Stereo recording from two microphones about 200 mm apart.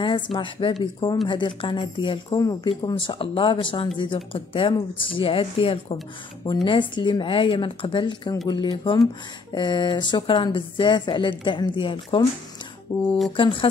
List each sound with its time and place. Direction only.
0.0 s a woman's voice: 25° left (ahead or behind)
12.9 s speech: 10° left (ahead or behind)
13.4 s speech: 25° left (ahead or behind)